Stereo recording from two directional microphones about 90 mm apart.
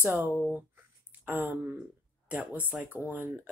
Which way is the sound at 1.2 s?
20° right (ahead or behind).